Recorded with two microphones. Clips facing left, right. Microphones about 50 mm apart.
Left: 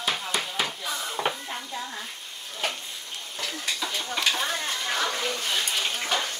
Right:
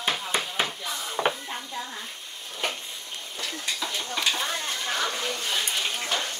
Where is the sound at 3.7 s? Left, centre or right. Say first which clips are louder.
Even; centre.